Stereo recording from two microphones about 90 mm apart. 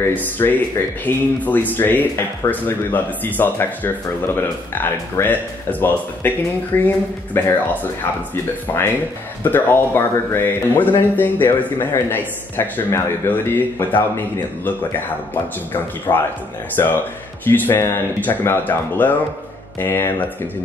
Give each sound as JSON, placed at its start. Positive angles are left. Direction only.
{"t": 0.0, "sound": "speech", "side_deg": 20}
{"t": 9.4, "sound": "speech", "side_deg": 25}
{"t": 16.1, "sound": "speech", "side_deg": 20}